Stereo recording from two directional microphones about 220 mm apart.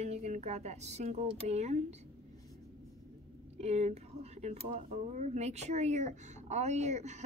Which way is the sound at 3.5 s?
30° right (ahead or behind).